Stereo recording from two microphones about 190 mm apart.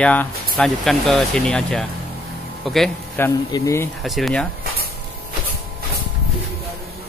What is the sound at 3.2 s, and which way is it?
Speech, 15° left (ahead or behind).